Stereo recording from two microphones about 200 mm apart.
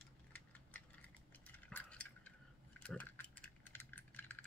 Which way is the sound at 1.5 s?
10° left (ahead or behind).